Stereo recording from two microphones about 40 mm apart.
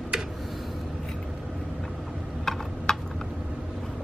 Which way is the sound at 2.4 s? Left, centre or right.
Centre.